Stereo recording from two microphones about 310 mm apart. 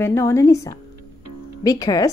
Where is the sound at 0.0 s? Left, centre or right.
Centre.